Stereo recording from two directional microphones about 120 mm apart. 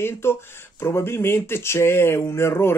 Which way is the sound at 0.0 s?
20° left (ahead or behind).